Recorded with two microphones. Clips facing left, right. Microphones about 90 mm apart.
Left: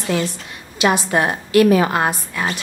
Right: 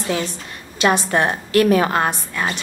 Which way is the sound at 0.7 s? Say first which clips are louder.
Even; 40° right (ahead or behind).